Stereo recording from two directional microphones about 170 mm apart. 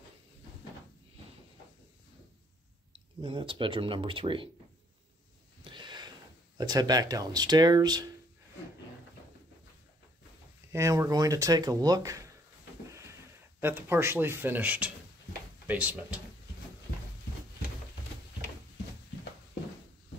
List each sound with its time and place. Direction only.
3.2 s speech: 30° right (ahead or behind)
5.6 s wheeze: 30° right (ahead or behind)
6.6 s speech: 25° right (ahead or behind)
10.7 s speech: 15° right (ahead or behind)
13.6 s speech: 15° right (ahead or behind)